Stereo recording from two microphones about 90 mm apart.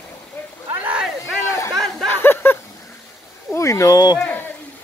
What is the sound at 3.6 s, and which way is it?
Speech, 35° left (ahead or behind).